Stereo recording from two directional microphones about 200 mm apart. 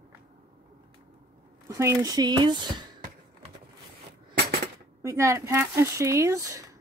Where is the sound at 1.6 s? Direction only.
15° right (ahead or behind).